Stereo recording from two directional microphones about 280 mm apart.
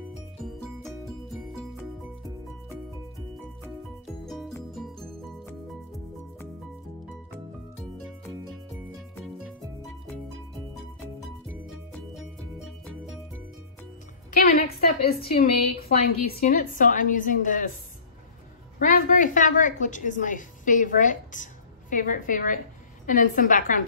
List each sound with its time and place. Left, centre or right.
4.3 s music: centre
9.1 s music: centre
12.6 s music: centre
14.3 s a woman's voice: left
18.8 s a woman's voice: left